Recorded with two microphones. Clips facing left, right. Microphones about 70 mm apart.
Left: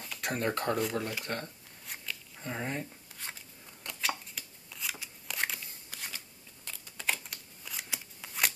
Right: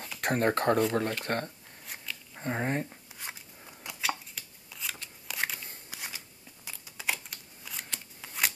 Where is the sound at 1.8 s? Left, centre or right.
Centre.